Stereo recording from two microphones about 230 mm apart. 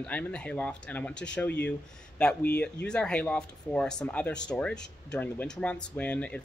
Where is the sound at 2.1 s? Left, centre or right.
Centre.